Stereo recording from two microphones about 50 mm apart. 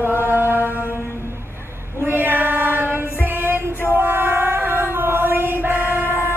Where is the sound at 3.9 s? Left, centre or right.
Right.